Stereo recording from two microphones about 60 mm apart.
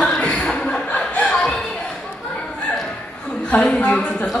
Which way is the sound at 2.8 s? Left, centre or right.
Centre.